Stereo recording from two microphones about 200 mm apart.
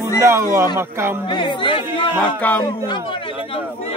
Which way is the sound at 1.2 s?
25° left (ahead or behind).